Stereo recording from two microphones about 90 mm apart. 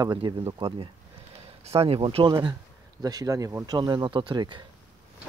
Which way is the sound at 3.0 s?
45° right (ahead or behind).